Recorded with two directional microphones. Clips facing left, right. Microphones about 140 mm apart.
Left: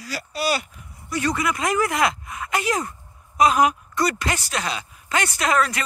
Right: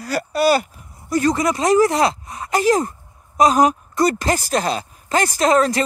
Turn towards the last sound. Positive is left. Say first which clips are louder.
# right 6 dB
turn(degrees=-35)  # may be behind; listen again after turning